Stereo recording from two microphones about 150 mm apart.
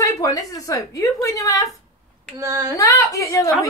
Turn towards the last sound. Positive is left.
turn(degrees=20)  # may be behind; listen again after turning